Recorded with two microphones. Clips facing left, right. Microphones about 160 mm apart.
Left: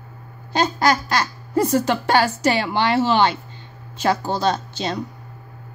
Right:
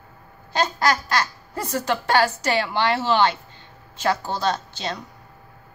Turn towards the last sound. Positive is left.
turn(degrees=15)  # may be behind; listen again after turning